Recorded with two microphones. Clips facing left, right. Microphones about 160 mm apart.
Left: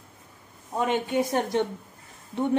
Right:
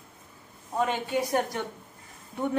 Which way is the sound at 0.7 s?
25° left (ahead or behind).